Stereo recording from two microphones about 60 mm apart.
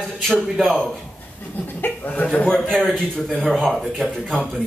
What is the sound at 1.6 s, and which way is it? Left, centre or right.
Speech, left.